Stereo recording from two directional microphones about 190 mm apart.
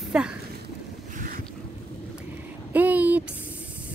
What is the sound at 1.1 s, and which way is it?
Boat, 45° right (ahead or behind).